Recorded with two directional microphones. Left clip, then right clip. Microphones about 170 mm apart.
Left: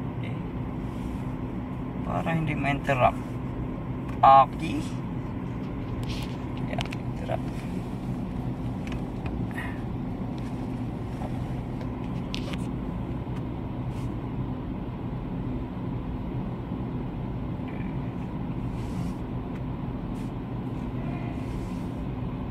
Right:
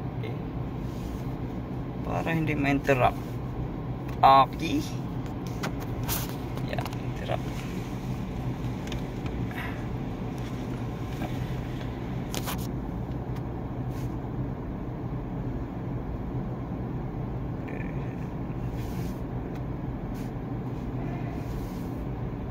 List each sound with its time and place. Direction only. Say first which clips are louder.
2.1 s speech: right 1 dB; 25° right (ahead or behind)
4.2 s speech: left 2 dB; 30° right (ahead or behind)